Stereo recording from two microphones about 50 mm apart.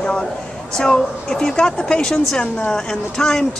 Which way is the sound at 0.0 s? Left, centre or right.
Centre.